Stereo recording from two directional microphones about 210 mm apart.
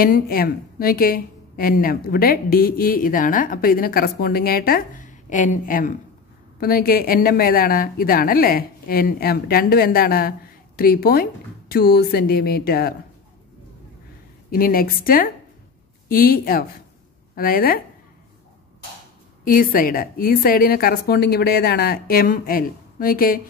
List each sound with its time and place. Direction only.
0.0 s a woman's voice: 45° left (ahead or behind)
14.5 s a woman's voice: 45° left (ahead or behind)
19.4 s a woman's voice: 40° left (ahead or behind)